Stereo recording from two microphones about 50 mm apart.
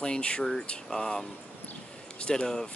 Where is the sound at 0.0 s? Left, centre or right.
Centre.